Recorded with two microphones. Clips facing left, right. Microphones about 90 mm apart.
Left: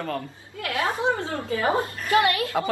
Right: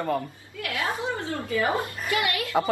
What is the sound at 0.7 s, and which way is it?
A woman's voice, 25° left (ahead or behind).